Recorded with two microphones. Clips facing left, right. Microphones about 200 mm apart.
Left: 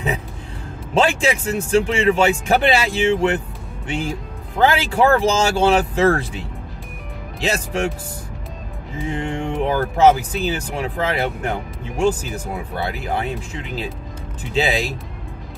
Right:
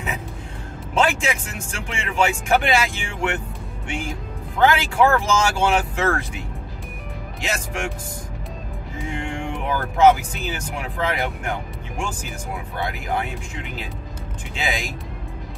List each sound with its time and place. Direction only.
0.9 s speech: 35° left (ahead or behind)
9.1 s speech: 35° left (ahead or behind)
14.5 s speech: 35° left (ahead or behind)